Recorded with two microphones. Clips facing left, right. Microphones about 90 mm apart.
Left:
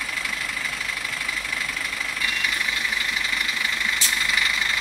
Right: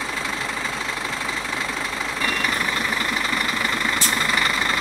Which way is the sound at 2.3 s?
45° right (ahead or behind).